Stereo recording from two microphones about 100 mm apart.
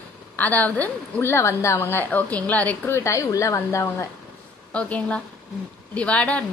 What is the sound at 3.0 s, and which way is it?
A woman's voice, 30° left (ahead or behind).